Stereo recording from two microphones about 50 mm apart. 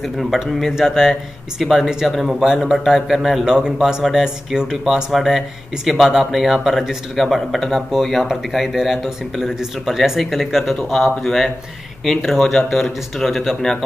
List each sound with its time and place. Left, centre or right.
0.0 s speech: centre
3.4 s speech: centre
7.2 s speech: centre